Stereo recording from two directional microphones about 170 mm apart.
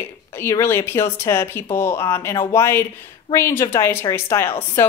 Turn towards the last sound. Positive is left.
turn(degrees=15)  # may be behind; listen again after turning